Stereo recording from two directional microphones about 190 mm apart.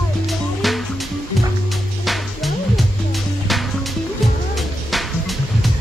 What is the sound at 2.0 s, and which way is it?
Music, centre (ahead or behind).